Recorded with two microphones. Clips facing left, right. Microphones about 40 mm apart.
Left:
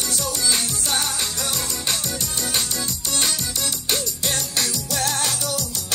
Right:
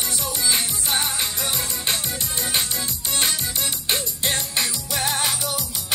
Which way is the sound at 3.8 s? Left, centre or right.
Right.